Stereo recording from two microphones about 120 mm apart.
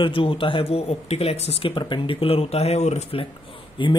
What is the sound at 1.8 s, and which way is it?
Speech, 45° left (ahead or behind).